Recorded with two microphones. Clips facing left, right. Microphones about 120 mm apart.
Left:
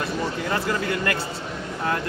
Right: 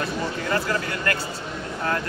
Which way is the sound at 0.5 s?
25° left (ahead or behind).